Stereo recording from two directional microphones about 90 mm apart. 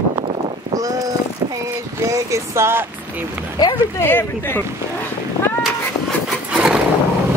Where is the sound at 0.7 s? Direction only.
40° right (ahead or behind).